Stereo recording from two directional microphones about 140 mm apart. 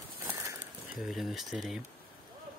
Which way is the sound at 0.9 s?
Centre (ahead or behind).